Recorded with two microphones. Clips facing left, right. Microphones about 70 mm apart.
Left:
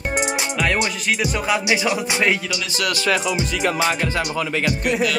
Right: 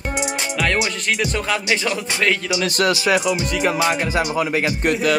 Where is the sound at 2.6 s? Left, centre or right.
Right.